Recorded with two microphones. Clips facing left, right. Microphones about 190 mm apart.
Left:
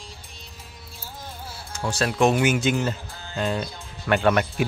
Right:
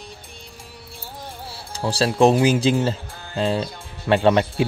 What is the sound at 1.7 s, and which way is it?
Speech, 30° right (ahead or behind).